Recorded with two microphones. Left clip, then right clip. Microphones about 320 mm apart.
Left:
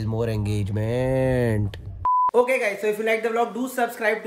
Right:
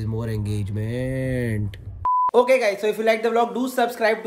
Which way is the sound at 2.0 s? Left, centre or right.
Centre.